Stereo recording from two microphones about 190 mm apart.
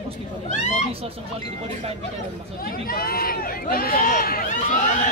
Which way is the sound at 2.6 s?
50° left (ahead or behind).